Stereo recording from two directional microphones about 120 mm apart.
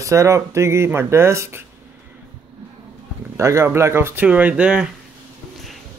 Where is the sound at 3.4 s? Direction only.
25° right (ahead or behind).